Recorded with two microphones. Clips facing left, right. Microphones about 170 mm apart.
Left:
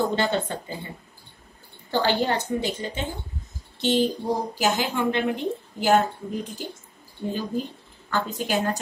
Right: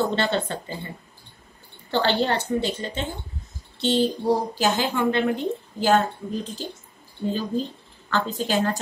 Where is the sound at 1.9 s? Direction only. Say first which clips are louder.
Right 1 dB; 10° left (ahead or behind).